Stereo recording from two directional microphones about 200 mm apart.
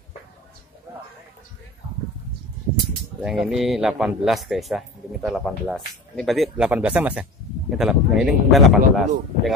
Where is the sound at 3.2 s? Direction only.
Centre (ahead or behind).